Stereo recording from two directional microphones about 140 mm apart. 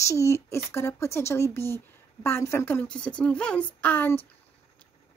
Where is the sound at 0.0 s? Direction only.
20° left (ahead or behind).